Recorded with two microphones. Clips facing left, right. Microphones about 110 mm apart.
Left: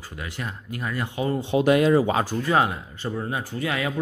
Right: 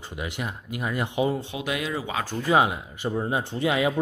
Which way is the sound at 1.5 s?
40° left (ahead or behind).